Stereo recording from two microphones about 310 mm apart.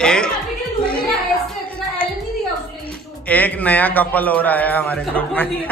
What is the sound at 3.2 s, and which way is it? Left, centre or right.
A man's voice, centre.